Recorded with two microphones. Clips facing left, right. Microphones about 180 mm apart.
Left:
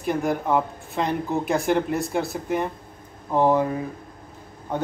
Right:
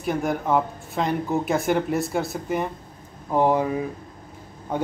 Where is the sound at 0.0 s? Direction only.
Centre (ahead or behind).